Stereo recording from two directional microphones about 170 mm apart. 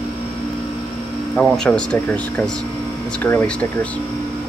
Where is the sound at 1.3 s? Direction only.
5° left (ahead or behind).